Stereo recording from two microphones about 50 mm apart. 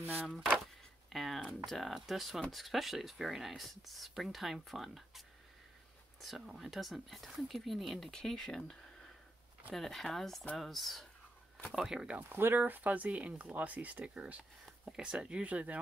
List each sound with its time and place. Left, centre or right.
1.1 s speech: centre
6.4 s speech: centre
11.7 s speech: centre
12.2 s speech: right
12.5 s speech: right